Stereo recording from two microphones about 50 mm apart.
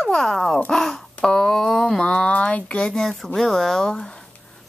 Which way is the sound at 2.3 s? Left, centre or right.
Left.